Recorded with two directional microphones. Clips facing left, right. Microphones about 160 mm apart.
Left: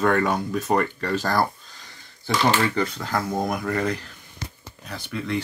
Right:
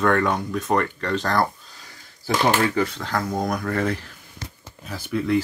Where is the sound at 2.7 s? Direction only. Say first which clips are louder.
Right 1 dB; centre (ahead or behind).